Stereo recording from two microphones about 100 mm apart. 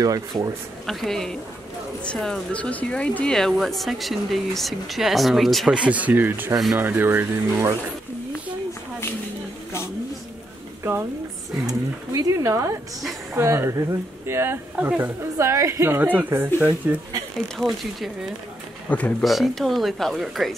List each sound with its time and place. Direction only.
0.0 s speech: 40° right (ahead or behind)
0.8 s speech: 5° left (ahead or behind)
5.8 s speech: 15° right (ahead or behind)
10.8 s a sound: 25° right (ahead or behind)
11.6 s speech: 35° right (ahead or behind)
16.0 s speech: 15° right (ahead or behind)
17.6 s speech: centre (ahead or behind)
18.9 s speech: 15° left (ahead or behind)
19.2 s speech: centre (ahead or behind)